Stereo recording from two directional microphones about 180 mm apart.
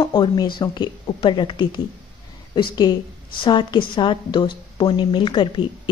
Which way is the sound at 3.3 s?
25° left (ahead or behind).